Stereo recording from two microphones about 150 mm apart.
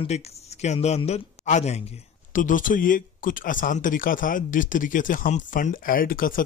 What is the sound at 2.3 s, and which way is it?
Speech, 60° left (ahead or behind).